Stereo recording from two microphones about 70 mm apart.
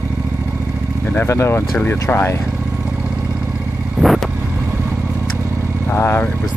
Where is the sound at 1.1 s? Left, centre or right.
Left.